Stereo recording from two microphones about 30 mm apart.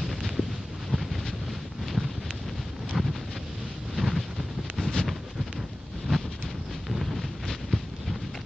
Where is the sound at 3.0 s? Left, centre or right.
Centre.